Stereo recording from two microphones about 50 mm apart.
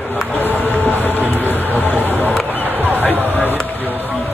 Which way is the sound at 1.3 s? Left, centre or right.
Left.